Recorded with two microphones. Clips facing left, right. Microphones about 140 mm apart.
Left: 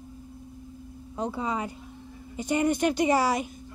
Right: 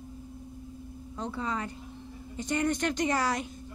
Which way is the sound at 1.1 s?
15° left (ahead or behind).